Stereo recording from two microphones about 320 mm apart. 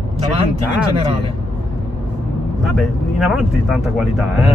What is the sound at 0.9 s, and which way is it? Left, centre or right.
Speech, centre.